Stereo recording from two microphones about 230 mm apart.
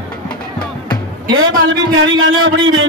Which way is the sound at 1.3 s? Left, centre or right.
Right.